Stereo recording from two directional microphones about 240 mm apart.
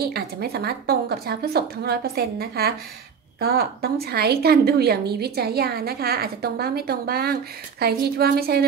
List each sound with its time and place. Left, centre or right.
0.0 s a woman's voice: right